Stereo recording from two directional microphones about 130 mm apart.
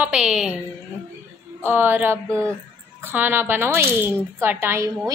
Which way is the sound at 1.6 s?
15° right (ahead or behind).